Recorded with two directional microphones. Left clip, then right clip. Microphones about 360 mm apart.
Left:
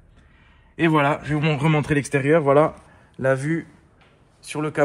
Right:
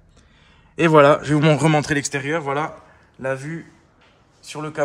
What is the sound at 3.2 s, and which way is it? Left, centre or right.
A man's voice, left.